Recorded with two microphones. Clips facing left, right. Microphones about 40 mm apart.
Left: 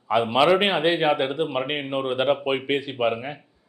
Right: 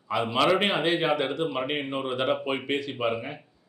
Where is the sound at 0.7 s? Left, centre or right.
Centre.